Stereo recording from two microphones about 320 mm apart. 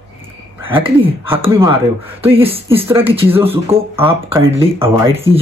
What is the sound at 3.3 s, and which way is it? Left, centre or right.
Speech, centre.